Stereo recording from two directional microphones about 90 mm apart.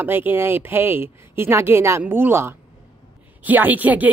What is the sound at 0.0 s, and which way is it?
Speech, 25° right (ahead or behind).